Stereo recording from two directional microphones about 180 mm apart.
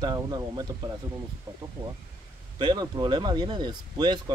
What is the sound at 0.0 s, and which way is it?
Speech, 20° right (ahead or behind).